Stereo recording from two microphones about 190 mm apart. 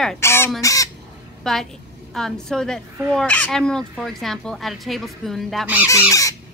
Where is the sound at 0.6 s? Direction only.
15° left (ahead or behind).